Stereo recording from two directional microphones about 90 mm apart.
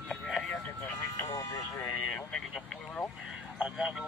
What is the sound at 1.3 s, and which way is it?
Speech, 35° left (ahead or behind).